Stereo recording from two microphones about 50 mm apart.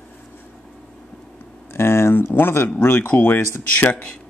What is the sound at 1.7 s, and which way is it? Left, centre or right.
Speech, left.